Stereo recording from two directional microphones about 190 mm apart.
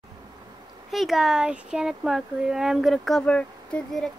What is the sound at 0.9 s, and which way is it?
Speech, centre (ahead or behind).